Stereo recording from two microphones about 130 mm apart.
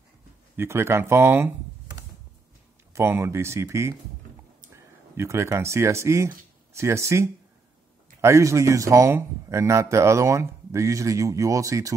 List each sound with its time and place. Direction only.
0.6 s a man's voice: 20° right (ahead or behind)
2.9 s a man's voice: 20° right (ahead or behind)